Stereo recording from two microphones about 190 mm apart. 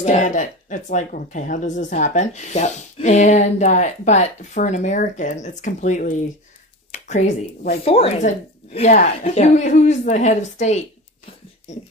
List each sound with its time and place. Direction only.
0.0 s speech: 40° left (ahead or behind)